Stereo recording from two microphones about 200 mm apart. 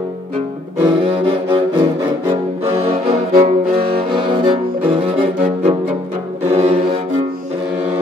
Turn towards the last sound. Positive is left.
turn(degrees=-30)  # may be behind; listen again after turning